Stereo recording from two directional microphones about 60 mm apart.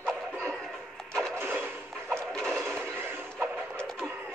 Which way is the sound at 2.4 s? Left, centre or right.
Right.